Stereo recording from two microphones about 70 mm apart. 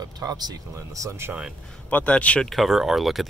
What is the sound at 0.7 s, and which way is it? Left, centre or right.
Speech, right.